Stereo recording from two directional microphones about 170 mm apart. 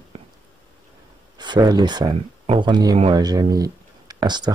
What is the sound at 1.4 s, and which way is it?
Speech, 25° right (ahead or behind).